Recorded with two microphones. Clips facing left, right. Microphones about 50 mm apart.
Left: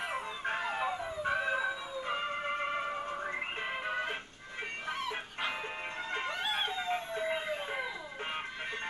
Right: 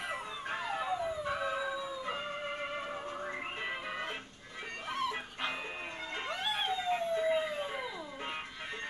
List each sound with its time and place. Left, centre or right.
0.5 s dog: left
2.8 s music: left
4.8 s dog: centre
6.2 s music: centre
6.9 s howl: left